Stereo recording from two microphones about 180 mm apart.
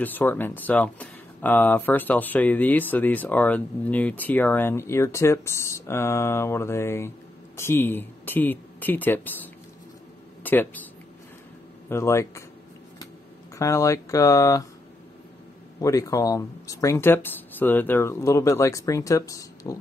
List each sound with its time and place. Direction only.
0.0 s speech: 10° left (ahead or behind)
10.4 s speech: 10° left (ahead or behind)
11.9 s speech: 15° left (ahead or behind)
13.6 s speech: 15° left (ahead or behind)
15.8 s speech: 20° left (ahead or behind)